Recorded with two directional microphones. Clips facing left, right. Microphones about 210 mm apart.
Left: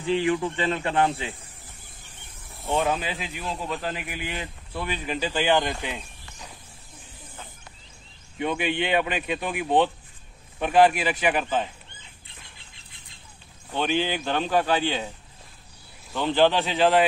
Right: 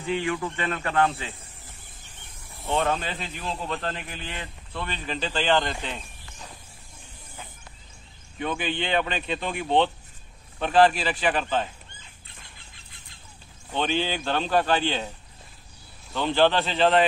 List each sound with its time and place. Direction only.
0.6 s speech: 20° left (ahead or behind)
2.6 s speech: centre (ahead or behind)
8.4 s speech: 15° left (ahead or behind)
13.7 s speech: 10° left (ahead or behind)
16.3 s speech: 15° left (ahead or behind)